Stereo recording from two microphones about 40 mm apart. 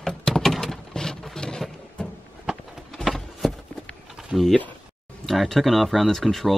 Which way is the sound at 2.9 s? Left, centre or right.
Centre.